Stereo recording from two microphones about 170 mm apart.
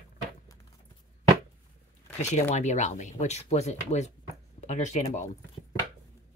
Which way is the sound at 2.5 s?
45° left (ahead or behind).